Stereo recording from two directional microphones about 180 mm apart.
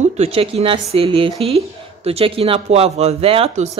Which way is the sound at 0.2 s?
30° right (ahead or behind).